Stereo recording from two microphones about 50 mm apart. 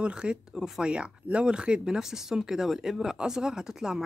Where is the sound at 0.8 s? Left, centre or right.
Right.